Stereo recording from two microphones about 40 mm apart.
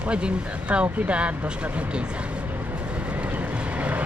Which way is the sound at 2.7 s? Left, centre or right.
Right.